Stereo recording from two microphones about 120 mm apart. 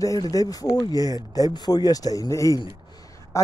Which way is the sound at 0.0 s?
30° left (ahead or behind).